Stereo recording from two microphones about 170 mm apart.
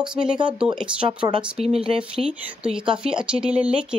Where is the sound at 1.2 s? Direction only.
35° right (ahead or behind).